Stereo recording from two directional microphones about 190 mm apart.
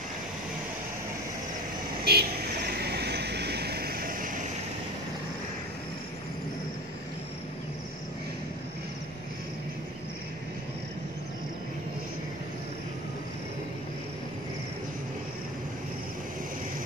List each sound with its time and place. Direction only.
2.0 s vehicle: 60° right (ahead or behind)